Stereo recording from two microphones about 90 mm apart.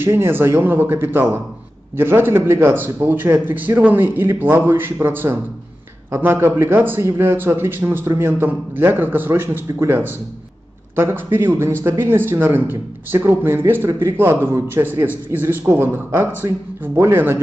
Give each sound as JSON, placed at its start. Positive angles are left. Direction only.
{"t": 0.0, "sound": "a man's voice", "side_deg": -25}